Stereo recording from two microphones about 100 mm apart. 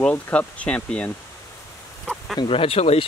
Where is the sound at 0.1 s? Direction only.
15° left (ahead or behind).